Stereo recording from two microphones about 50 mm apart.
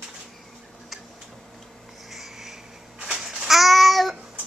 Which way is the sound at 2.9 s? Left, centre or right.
Centre.